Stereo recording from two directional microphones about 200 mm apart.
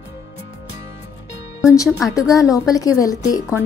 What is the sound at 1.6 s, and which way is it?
A woman's voice, 15° left (ahead or behind).